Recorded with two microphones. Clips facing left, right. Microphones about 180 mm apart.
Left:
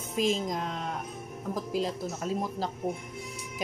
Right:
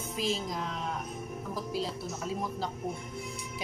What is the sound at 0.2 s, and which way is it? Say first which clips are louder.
Speech: left 5 dB; 45° left (ahead or behind).